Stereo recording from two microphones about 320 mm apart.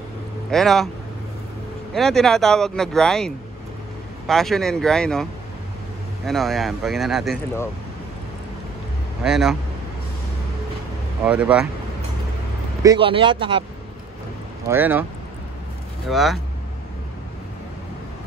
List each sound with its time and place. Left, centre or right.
0.5 s speech: centre
2.0 s speech: centre
9.2 s speech: centre
11.2 s speech: centre
12.8 s speech: centre
14.7 s speech: centre
16.1 s speech: centre